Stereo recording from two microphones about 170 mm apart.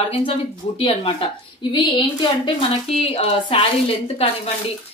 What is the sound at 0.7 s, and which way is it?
A woman's voice, 35° left (ahead or behind).